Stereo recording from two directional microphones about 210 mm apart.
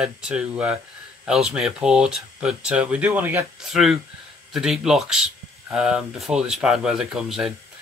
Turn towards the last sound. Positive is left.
turn(degrees=-5)  # may be behind; listen again after turning